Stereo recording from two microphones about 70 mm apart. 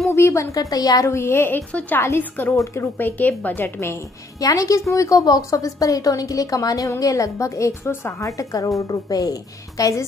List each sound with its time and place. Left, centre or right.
0.1 s a sound: left
0.6 s a woman's voice: left
1.0 s speech: left
1.7 s speech: centre
2.0 s speech: left
3.0 s speech: left
4.4 s a woman's voice: left